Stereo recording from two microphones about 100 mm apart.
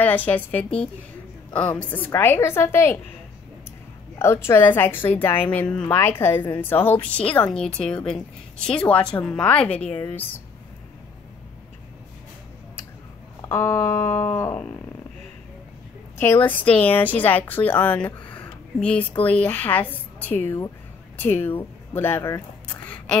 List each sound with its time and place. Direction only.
0.0 s a woman's voice: 15° left (ahead or behind)
4.2 s a woman's voice: 25° left (ahead or behind)
13.4 s a woman's voice: 25° left (ahead or behind)
16.2 s a woman's voice: 25° left (ahead or behind)
22.8 s a sound: 15° left (ahead or behind)